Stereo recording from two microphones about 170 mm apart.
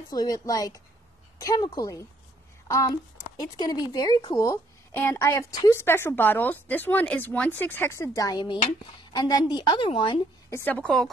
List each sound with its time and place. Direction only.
0.1 s a woman's voice: 20° left (ahead or behind)
3.3 s a woman's voice: 20° left (ahead or behind)
10.5 s a woman's voice: 10° left (ahead or behind)